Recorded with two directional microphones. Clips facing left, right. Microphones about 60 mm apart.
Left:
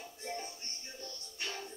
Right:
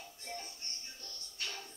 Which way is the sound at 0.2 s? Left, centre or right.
Left.